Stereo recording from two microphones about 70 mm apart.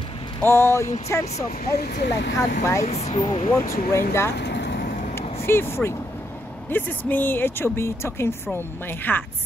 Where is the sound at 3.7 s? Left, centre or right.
Left.